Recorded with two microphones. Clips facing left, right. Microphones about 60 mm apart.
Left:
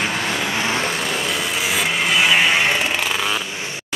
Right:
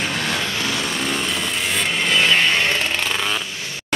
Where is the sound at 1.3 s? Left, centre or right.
Centre.